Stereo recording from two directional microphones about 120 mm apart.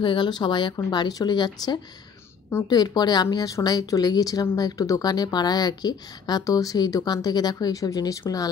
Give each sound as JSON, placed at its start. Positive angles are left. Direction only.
{"t": 0.0, "sound": "a woman's voice", "side_deg": 40}